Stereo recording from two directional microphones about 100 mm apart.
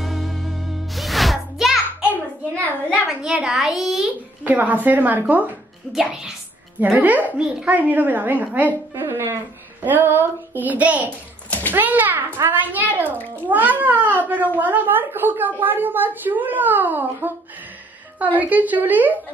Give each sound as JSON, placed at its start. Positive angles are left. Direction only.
{"t": 0.0, "sound": "music", "side_deg": 0}
{"t": 2.9, "sound": "a child's voice", "side_deg": -5}
{"t": 4.5, "sound": "a woman's voice", "side_deg": -15}
{"t": 5.9, "sound": "a woman's voice", "side_deg": -5}
{"t": 6.9, "sound": "a woman's voice", "side_deg": -15}